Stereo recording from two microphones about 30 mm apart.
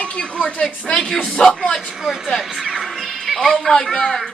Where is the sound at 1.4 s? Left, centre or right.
Centre.